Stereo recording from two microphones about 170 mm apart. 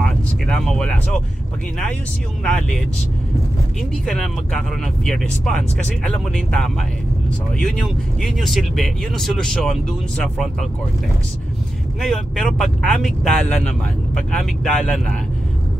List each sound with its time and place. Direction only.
0.0 s speech: 5° left (ahead or behind)
2.4 s speech: 5° left (ahead or behind)
4.0 s speech: 5° left (ahead or behind)
12.0 s speech: 5° left (ahead or behind)